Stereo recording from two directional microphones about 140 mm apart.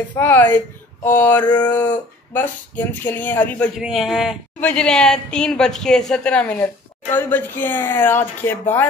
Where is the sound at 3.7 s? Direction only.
5° right (ahead or behind).